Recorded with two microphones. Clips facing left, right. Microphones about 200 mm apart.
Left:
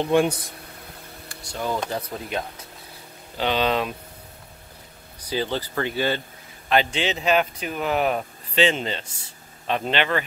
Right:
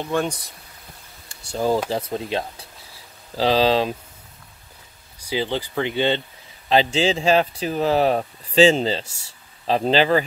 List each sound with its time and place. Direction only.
0.0 s speech: 15° left (ahead or behind)
1.3 s speech: 30° right (ahead or behind)
5.2 s speech: 15° right (ahead or behind); by 10.2 s 35° right (ahead or behind)